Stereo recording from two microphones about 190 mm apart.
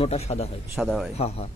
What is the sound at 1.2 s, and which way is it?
Speech, 35° left (ahead or behind).